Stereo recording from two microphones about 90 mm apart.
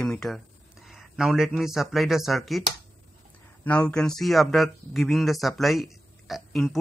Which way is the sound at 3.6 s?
15° left (ahead or behind).